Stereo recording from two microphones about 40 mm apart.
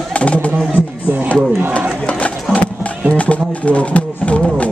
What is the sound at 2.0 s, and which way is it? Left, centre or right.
Music, left.